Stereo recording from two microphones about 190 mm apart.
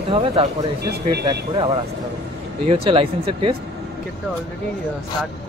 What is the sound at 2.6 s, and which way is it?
Speech, 30° right (ahead or behind).